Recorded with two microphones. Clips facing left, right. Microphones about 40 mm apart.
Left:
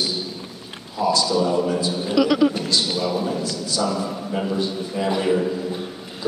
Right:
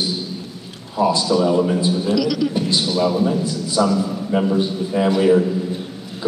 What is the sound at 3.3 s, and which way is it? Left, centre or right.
A man's voice, right.